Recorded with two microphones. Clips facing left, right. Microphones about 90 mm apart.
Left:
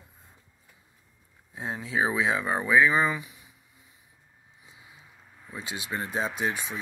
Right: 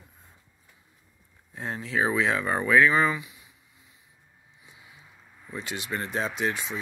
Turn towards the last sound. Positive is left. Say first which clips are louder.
# right 1 dB
turn(degrees=15)  # may be behind; listen again after turning